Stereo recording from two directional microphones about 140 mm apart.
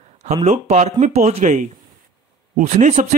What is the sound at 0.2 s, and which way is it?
Speech, 50° right (ahead or behind).